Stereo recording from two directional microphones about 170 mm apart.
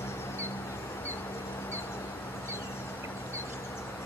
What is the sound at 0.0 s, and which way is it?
Music, 15° left (ahead or behind).